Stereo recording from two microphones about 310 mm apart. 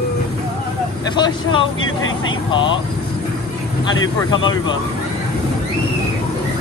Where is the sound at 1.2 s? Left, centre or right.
Centre.